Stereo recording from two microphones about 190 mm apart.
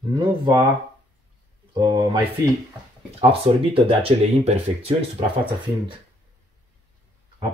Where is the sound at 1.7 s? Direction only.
20° right (ahead or behind).